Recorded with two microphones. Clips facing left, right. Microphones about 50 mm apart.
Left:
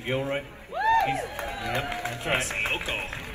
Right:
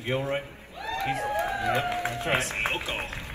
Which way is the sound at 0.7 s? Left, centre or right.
Left.